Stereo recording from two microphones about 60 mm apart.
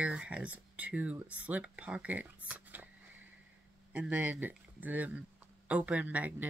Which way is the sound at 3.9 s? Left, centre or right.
Right.